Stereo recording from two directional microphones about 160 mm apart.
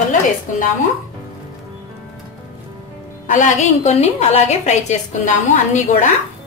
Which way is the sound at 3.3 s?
50° left (ahead or behind).